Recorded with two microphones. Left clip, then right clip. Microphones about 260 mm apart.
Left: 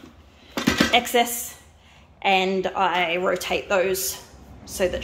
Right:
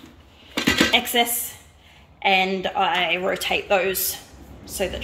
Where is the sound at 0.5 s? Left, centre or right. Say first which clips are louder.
Right 2 dB; left.